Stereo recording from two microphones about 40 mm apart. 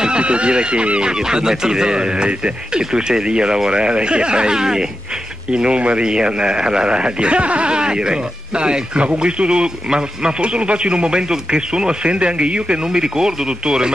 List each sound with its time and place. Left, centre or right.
0.0 s speech: right
12.8 s speech: centre